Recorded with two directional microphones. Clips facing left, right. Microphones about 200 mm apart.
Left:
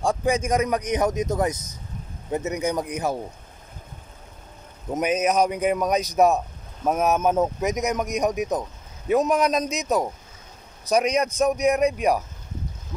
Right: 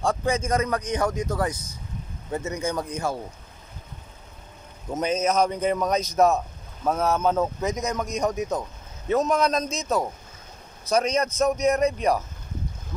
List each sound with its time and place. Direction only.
0.0 s a man's voice: 15° left (ahead or behind)
4.9 s a man's voice: 15° left (ahead or behind)